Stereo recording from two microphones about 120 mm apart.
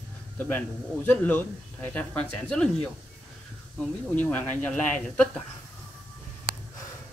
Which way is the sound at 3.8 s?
10° left (ahead or behind).